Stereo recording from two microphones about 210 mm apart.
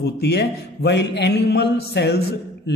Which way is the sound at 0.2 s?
50° left (ahead or behind).